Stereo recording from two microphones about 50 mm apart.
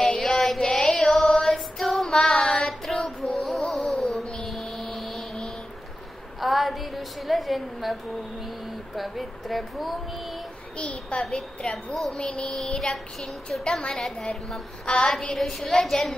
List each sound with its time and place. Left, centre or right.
0.2 s child singing: centre
2.3 s child singing: left
2.9 s child singing: centre
3.7 s music: centre
4.5 s vehicle: centre
6.4 s a woman's voice: centre
10.8 s a woman's voice: left
11.9 s a sound: centre
12.2 s a sound: centre
15.3 s a woman's voice: centre
15.7 s a sound: centre